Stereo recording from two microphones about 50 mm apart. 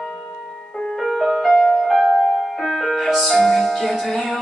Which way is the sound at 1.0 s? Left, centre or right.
Centre.